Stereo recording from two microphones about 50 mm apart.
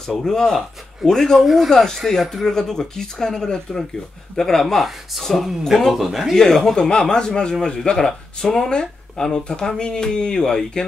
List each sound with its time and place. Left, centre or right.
0.0 s speech: centre
6.3 s speech: centre